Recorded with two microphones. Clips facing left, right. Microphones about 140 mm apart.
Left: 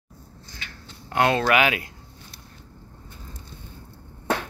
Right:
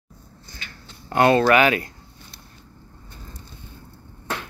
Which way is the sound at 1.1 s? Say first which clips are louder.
Right 4 dB; centre (ahead or behind).